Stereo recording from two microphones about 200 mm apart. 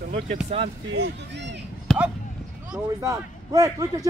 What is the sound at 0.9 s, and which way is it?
Speech, 60° right (ahead or behind).